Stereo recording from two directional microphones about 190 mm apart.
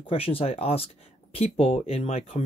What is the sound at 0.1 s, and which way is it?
Speech, 30° left (ahead or behind).